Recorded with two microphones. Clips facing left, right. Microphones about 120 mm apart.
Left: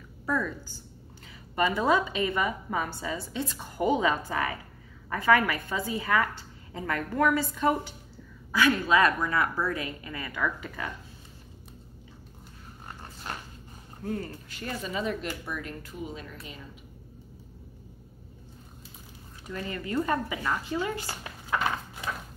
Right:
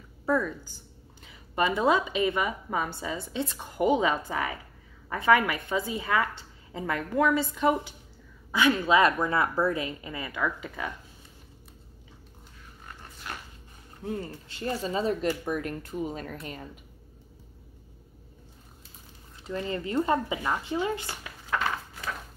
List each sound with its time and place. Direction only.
0.3 s a woman's voice: 15° right (ahead or behind)
14.0 s speech: 20° right (ahead or behind); by 16.6 s 50° right (ahead or behind)
19.4 s a woman's voice: 25° right (ahead or behind)
21.5 s a sound: 15° left (ahead or behind)